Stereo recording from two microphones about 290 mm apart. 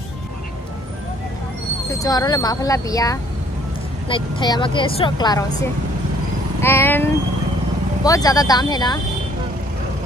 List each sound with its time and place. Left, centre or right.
2.0 s speech: centre